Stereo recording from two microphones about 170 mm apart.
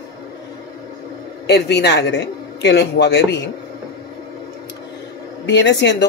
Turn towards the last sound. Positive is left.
turn(degrees=90)